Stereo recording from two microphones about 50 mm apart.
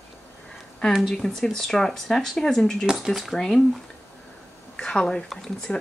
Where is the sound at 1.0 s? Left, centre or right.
Centre.